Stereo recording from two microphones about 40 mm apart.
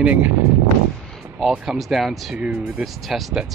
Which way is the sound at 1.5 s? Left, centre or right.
Centre.